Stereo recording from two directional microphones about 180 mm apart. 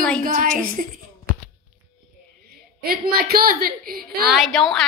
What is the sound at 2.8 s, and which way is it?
A woman's voice, 60° right (ahead or behind).